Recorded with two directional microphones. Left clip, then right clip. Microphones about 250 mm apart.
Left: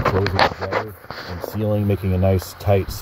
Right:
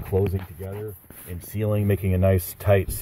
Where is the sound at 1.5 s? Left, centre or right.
Centre.